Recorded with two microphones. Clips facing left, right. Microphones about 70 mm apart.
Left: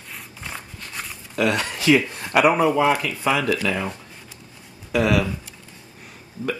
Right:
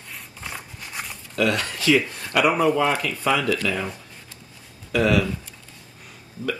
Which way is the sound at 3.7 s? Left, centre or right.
Left.